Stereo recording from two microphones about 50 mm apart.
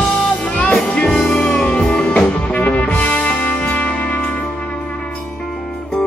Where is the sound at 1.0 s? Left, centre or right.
Centre.